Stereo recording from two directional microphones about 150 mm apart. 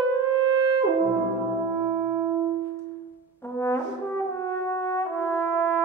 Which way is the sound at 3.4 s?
15° left (ahead or behind).